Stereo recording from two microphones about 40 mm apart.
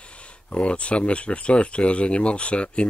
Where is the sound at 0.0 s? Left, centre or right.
Left.